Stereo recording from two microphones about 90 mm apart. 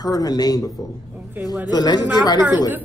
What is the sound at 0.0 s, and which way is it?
Speech, 45° left (ahead or behind).